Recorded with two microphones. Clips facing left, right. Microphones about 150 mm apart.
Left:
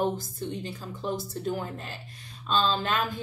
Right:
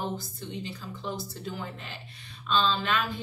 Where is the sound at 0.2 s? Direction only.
50° left (ahead or behind).